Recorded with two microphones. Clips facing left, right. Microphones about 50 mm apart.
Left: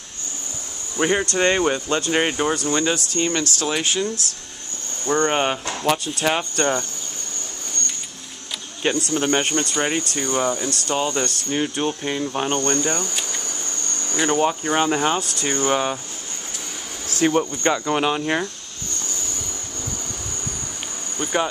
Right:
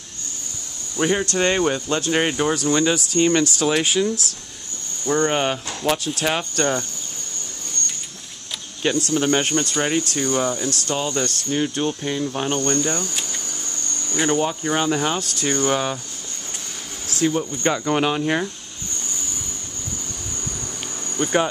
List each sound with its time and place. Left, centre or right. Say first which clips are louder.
0.9 s speech: even; centre
3.1 s speech: right 5 dB; centre
5.0 s speech: even; centre
9.1 s speech: right 2 dB; centre
14.1 s speech: left 1 dB; centre
17.1 s speech: left 2 dB; left
17.6 s speech: right 3 dB; centre
21.2 s cricket: right 2 dB; centre